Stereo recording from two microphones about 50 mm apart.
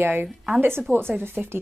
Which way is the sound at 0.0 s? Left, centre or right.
Right.